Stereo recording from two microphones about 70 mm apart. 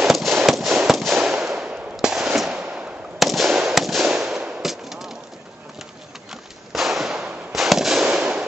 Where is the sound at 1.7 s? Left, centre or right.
Centre.